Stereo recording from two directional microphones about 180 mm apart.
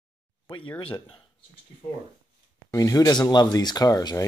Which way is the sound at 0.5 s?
25° left (ahead or behind).